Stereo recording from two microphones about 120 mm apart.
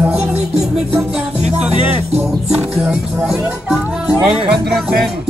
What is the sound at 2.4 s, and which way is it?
Music, 10° right (ahead or behind).